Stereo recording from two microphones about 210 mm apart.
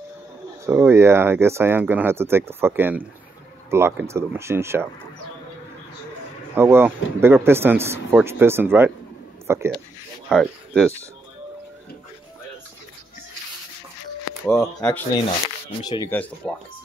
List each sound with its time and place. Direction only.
0.7 s speech: 10° right (ahead or behind)
6.5 s speech: 10° right (ahead or behind)
10.3 s speech: centre (ahead or behind)
14.4 s speech: 15° left (ahead or behind)
15.8 s speech: 20° left (ahead or behind)
16.1 s speech: 5° left (ahead or behind)